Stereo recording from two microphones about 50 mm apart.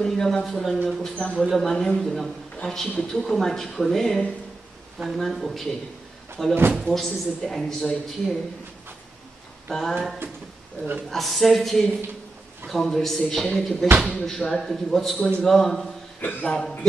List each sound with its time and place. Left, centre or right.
0.0 s a man's voice: centre
1.1 s a man's voice: centre
1.4 s a man's voice: centre
9.7 s speech: centre
11.1 s a man's voice: centre
16.2 s a man's voice: left
16.4 s a man's voice: centre